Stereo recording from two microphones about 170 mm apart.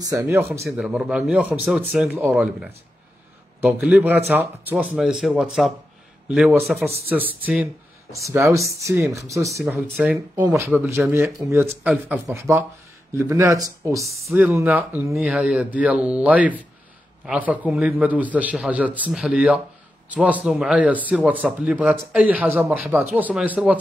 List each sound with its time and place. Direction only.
0.0 s a man's voice: 20° right (ahead or behind)
0.7 s a man's voice: centre (ahead or behind); by 9.5 s 20° right (ahead or behind)
9.8 s a man's voice: 5° right (ahead or behind)
14.0 s speech: centre (ahead or behind)
14.3 s a man's voice: 10° right (ahead or behind)